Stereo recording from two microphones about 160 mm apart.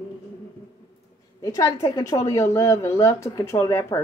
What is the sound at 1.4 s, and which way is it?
A woman's voice, 20° left (ahead or behind).